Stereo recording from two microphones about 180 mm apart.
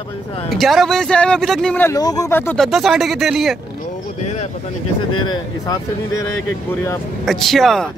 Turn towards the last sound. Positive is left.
turn(degrees=0)  # may be behind; listen again after turning